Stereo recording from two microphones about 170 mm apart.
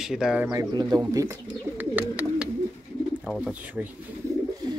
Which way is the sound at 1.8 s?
10° right (ahead or behind).